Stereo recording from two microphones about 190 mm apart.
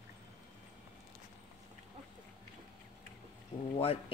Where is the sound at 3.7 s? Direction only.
30° left (ahead or behind).